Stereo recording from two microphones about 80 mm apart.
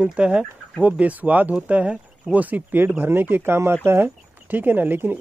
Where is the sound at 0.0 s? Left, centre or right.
Centre.